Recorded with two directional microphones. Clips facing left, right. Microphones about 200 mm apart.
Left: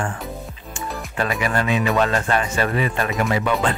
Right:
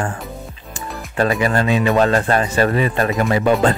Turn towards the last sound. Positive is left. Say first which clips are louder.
# right 5 dB
turn(degrees=-35)  # may be behind; listen again after turning